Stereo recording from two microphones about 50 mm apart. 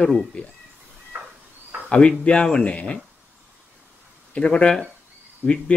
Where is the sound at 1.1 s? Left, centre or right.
Right.